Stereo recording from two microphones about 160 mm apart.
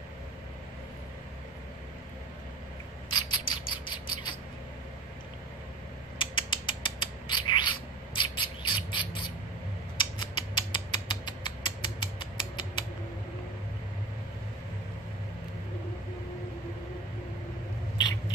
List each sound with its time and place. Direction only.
3.1 s rodents: 30° left (ahead or behind)
4.1 s mouse: 30° left (ahead or behind)
6.1 s creak: 30° left (ahead or behind)
9.9 s mechanisms: 30° left (ahead or behind)